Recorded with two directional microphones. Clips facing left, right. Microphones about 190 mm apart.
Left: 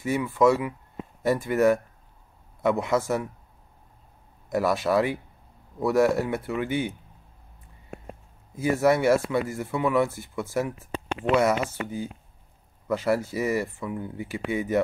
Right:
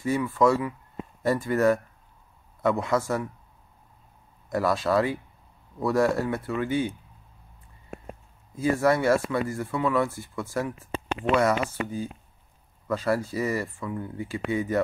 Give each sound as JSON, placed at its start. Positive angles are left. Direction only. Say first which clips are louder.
{"t": 0.0, "sound": "speech", "louder": "left 1 dB", "side_deg": 15}
{"t": 4.5, "sound": "speech", "louder": "left 1 dB", "side_deg": 20}
{"t": 8.5, "sound": "speech", "louder": "left 1 dB", "side_deg": 20}
{"t": 11.4, "sound": "speech", "louder": "even", "side_deg": 15}